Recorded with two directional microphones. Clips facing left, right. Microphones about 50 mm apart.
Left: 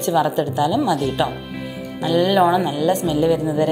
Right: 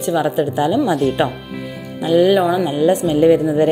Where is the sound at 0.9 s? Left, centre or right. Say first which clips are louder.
Right 3 dB; centre.